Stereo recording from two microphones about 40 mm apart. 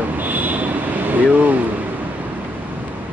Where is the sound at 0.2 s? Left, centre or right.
Right.